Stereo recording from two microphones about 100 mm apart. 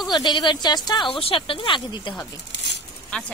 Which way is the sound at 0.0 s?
50° left (ahead or behind).